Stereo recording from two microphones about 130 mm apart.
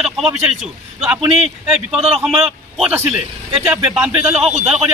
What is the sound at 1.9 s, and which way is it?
A man's voice, centre (ahead or behind).